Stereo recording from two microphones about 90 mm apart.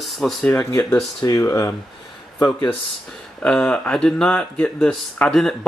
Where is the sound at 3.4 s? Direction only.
10° left (ahead or behind).